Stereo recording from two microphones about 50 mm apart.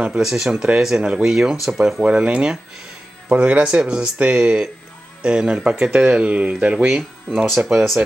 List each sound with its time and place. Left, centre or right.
0.2 s speech: centre
0.5 s speech: centre
2.0 s speech: right
7.4 s speech: centre